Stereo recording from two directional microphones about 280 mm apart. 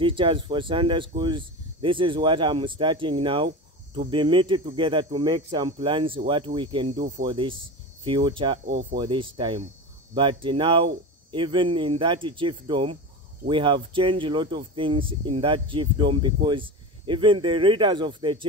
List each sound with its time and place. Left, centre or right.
0.0 s speech: centre